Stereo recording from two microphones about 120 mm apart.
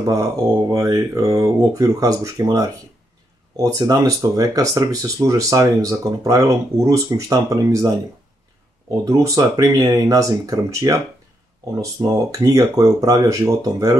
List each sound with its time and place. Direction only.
0.0 s speech: 30° right (ahead or behind)
9.0 s speech: 25° right (ahead or behind)